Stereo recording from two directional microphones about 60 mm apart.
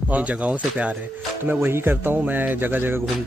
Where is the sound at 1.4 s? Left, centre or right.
Right.